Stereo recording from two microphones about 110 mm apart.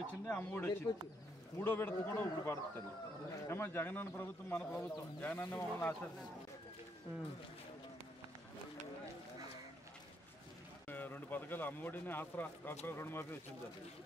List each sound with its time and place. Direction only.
0.0 s a man's voice: 15° left (ahead or behind)
10.9 s a man's voice: 15° left (ahead or behind)